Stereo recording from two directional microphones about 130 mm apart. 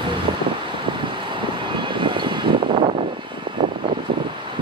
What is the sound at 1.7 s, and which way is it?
Vehicle, 40° right (ahead or behind).